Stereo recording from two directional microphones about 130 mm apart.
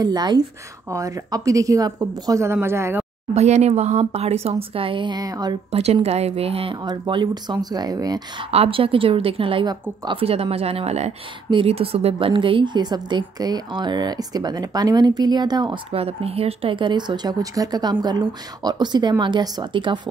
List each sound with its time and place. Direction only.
0.0 s a woman's voice: 30° right (ahead or behind)
3.3 s a woman's voice: 60° right (ahead or behind); by 5.6 s 30° right (ahead or behind)
5.7 s a woman's voice: 55° right (ahead or behind); by 8.5 s 30° right (ahead or behind)
8.5 s a woman's voice: 45° right (ahead or behind)
15.9 s a woman's voice: 50° right (ahead or behind)